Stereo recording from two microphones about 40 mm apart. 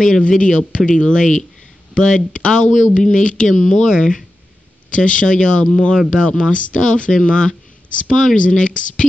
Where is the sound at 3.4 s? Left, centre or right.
Centre.